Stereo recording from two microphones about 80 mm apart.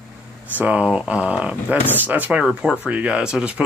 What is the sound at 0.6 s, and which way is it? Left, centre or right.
Speech, centre.